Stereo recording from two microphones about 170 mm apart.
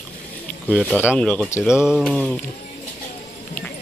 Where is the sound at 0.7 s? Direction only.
Centre (ahead or behind).